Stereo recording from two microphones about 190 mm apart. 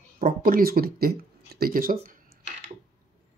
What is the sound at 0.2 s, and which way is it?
Speech, 50° right (ahead or behind).